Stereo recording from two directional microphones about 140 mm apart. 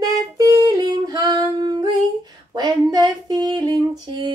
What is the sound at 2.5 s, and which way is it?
Music, 30° right (ahead or behind).